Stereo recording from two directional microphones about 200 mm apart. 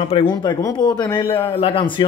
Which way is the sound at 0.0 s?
25° left (ahead or behind).